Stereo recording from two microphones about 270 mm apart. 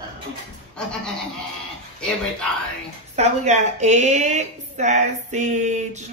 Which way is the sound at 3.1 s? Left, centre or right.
Right.